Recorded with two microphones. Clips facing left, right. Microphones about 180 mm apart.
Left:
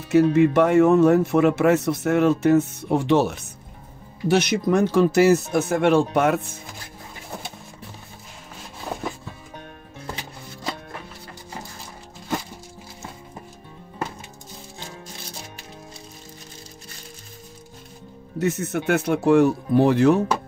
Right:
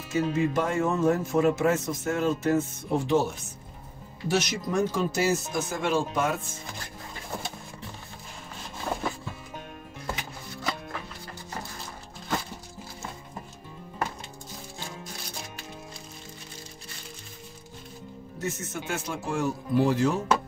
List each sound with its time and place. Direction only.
0.1 s speech: 65° left (ahead or behind)
4.3 s speech: 60° left (ahead or behind)
18.4 s speech: 65° left (ahead or behind)